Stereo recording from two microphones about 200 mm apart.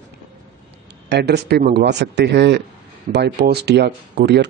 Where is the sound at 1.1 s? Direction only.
55° right (ahead or behind).